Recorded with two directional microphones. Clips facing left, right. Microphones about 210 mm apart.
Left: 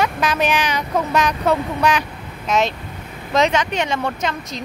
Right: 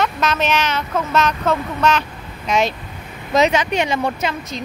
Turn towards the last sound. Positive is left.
turn(degrees=-10)  # may be behind; listen again after turning